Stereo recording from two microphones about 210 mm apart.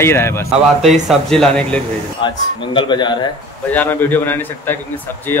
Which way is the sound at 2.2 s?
25° left (ahead or behind).